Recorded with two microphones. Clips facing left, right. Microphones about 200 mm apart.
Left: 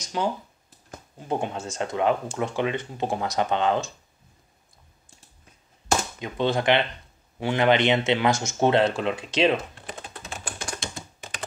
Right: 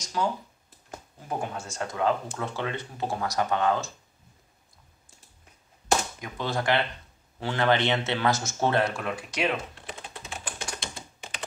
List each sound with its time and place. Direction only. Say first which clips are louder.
0.2 s speech: left 2 dB; 25° left (ahead or behind)
6.1 s speech: left 6 dB; 25° left (ahead or behind)
10.4 s typing: left 4 dB; 45° left (ahead or behind)